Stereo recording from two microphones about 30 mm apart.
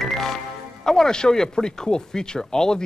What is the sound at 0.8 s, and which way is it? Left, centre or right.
Speech, centre.